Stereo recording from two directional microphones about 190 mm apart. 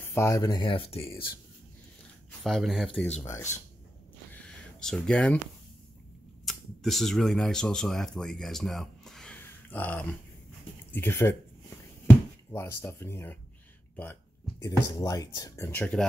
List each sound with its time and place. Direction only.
0.0 s speech: 15° left (ahead or behind); by 1.0 s 30° left (ahead or behind)
2.4 s speech: centre (ahead or behind)
4.3 s a sound: 5° left (ahead or behind)
6.4 s speech: centre (ahead or behind)
12.4 s speech: 15° left (ahead or behind)
14.6 s speech: 20° left (ahead or behind)